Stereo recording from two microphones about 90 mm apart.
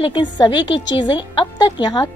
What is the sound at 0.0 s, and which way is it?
A woman's voice, 65° left (ahead or behind).